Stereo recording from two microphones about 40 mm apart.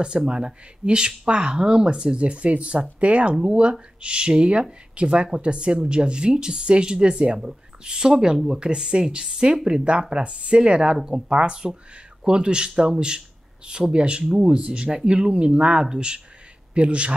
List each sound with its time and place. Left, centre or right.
0.3 s speech: right